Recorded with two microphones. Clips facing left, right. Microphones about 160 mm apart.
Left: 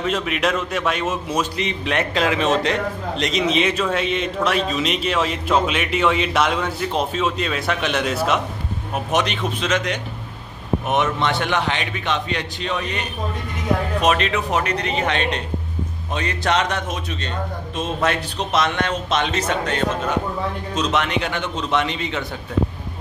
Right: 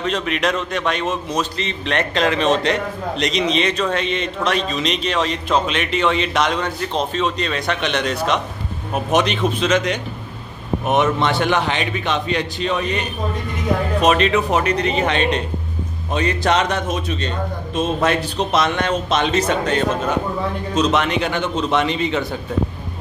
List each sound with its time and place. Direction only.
0.0 s a man's voice: 5° left (ahead or behind)
9.6 s a man's voice: centre (ahead or behind)
10.9 s speech: 40° right (ahead or behind)
14.0 s speech: 35° right (ahead or behind)
20.7 s speech: 35° right (ahead or behind)